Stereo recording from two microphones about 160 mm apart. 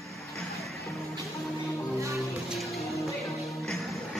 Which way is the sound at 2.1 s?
Centre (ahead or behind).